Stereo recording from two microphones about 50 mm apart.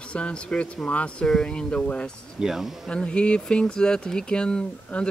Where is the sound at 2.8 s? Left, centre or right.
Left.